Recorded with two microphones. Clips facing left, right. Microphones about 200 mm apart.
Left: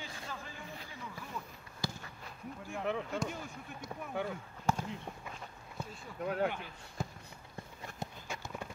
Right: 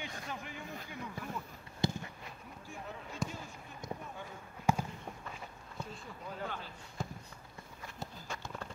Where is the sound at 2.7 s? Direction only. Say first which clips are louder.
Left 11 dB; 75° left (ahead or behind).